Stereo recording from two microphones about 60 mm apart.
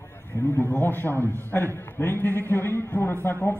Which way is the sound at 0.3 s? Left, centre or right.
Left.